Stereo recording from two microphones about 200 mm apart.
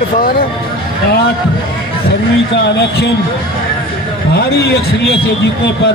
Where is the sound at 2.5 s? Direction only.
60° left (ahead or behind).